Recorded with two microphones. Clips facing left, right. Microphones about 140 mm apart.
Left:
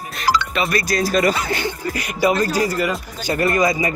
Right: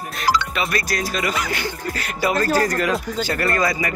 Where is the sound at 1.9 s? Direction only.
15° left (ahead or behind).